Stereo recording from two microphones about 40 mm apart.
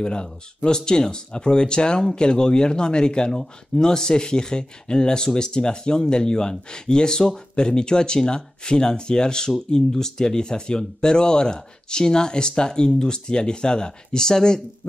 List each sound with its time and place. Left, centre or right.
0.0 s speech: left